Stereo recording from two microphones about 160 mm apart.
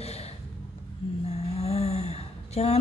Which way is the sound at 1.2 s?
40° left (ahead or behind).